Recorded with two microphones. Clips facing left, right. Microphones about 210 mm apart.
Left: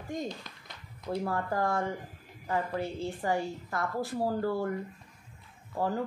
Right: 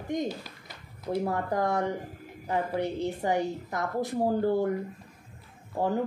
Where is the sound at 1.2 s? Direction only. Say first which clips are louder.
Right 2 dB; 20° right (ahead or behind).